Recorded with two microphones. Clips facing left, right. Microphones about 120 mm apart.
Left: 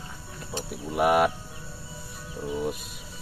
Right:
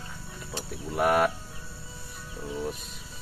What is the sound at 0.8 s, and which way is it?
Speech, 10° left (ahead or behind).